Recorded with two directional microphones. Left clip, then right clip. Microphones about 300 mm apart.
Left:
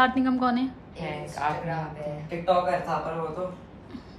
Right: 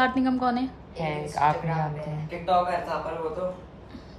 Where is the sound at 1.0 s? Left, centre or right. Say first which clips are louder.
Right 6 dB; right.